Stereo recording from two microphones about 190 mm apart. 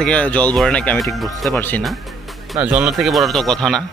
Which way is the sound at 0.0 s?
5° left (ahead or behind).